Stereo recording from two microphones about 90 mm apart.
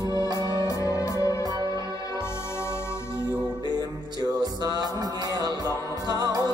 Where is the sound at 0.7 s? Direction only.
35° left (ahead or behind).